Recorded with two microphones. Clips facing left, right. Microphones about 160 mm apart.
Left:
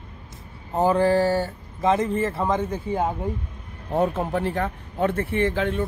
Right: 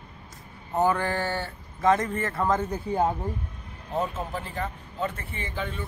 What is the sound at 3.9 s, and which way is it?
A man's voice, 60° left (ahead or behind).